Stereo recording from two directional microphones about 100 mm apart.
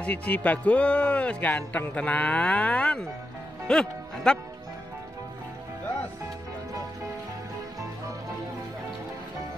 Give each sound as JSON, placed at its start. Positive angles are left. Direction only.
{"t": 0.0, "sound": "speech", "side_deg": 15}